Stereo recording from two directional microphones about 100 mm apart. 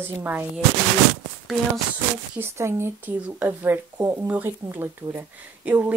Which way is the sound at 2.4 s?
25° right (ahead or behind).